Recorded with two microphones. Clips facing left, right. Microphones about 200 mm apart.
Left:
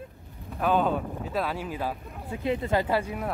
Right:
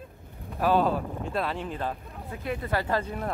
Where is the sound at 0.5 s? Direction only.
Centre (ahead or behind).